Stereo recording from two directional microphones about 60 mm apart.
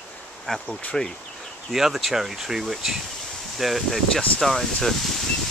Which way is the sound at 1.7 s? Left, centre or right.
Centre.